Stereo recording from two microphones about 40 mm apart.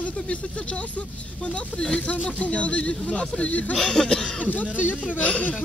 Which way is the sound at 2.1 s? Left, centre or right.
Left.